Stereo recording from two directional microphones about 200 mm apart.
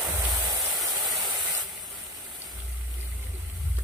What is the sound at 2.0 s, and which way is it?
Rain, 20° right (ahead or behind).